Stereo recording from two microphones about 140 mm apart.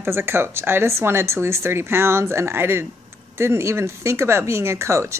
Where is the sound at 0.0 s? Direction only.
15° right (ahead or behind).